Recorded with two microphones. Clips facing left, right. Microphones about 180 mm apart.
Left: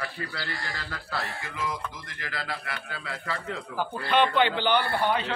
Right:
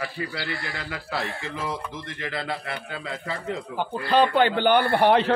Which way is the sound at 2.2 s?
25° right (ahead or behind).